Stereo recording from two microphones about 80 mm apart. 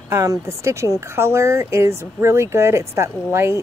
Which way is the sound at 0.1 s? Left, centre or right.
Right.